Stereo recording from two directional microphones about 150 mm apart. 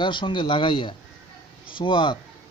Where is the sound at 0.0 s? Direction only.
35° left (ahead or behind).